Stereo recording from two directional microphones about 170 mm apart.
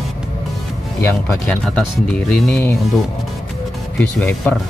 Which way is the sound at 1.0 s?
10° left (ahead or behind).